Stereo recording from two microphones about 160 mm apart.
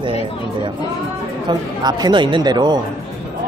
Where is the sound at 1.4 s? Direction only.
25° right (ahead or behind).